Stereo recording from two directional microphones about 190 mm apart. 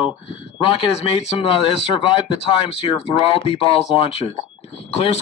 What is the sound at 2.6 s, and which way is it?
Speech, 30° left (ahead or behind).